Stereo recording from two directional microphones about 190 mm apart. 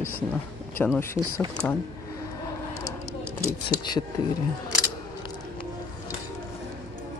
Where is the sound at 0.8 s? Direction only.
10° left (ahead or behind).